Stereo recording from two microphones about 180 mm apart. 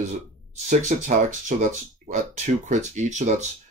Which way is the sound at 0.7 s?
45° right (ahead or behind).